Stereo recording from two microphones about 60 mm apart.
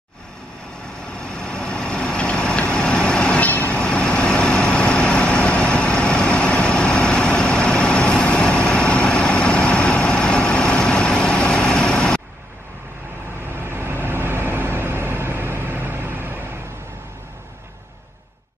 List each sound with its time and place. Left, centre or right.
1.1 s vehicle: centre
3.4 s train: left
3.8 s vehicle: centre
13.5 s vehicle: right